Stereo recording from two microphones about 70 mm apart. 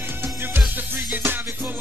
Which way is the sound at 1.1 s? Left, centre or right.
Right.